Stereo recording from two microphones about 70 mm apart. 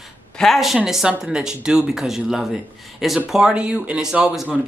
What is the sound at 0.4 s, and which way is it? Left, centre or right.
Speech, centre.